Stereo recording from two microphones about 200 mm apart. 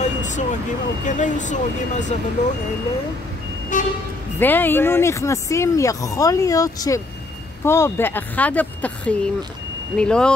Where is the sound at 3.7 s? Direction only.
40° left (ahead or behind).